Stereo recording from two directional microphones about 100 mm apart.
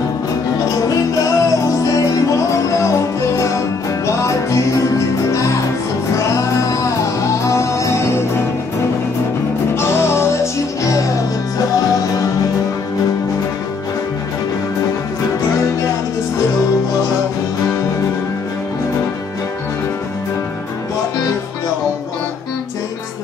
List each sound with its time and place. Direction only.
0.8 s music: 35° left (ahead or behind)
9.8 s music: 25° left (ahead or behind)